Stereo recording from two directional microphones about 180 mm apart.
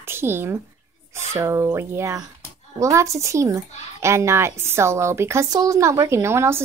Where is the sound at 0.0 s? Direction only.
15° right (ahead or behind).